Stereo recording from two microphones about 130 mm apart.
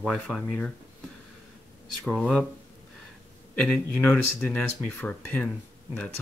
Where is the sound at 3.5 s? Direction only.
10° left (ahead or behind).